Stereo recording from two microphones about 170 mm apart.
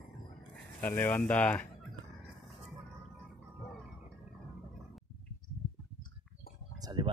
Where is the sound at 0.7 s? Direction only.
10° left (ahead or behind).